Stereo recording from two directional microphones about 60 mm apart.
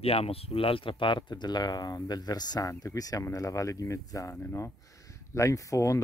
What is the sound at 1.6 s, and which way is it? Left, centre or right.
Speech, left.